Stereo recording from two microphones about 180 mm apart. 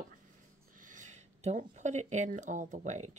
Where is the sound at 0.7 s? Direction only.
45° right (ahead or behind).